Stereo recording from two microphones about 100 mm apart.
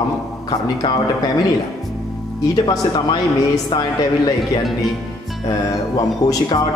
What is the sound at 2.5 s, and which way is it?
Speech, 45° left (ahead or behind).